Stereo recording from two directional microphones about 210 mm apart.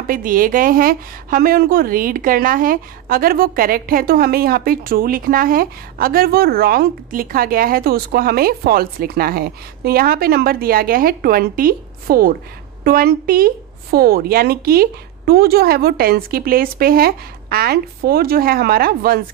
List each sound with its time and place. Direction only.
0.0 s a woman's voice: 40° right (ahead or behind)